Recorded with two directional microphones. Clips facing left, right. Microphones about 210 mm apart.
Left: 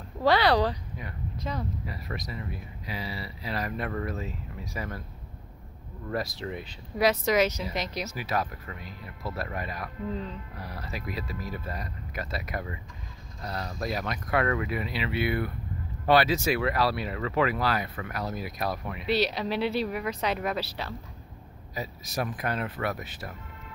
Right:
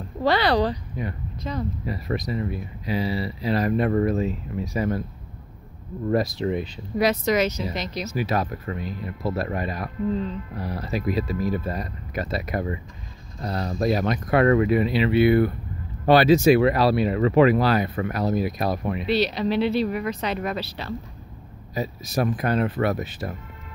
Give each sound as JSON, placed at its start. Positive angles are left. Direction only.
{"t": 0.2, "sound": "speech", "side_deg": 5}
{"t": 1.9, "sound": "speech", "side_deg": -25}
{"t": 6.0, "sound": "speech", "side_deg": -20}
{"t": 7.0, "sound": "speech", "side_deg": 5}
{"t": 8.1, "sound": "speech", "side_deg": -25}
{"t": 19.0, "sound": "speech", "side_deg": 10}
{"t": 21.7, "sound": "speech", "side_deg": -30}